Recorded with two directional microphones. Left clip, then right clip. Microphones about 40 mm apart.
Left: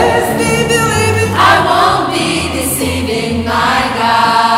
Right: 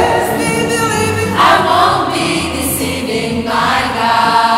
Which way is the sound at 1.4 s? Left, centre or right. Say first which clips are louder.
Even; centre.